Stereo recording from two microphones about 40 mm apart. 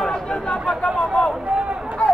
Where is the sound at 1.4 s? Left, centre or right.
Right.